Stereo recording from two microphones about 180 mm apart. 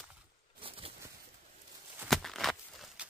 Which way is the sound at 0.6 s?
30° right (ahead or behind).